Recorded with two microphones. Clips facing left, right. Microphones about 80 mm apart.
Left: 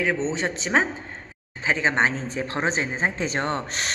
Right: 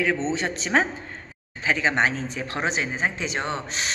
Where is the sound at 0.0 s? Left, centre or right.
Left.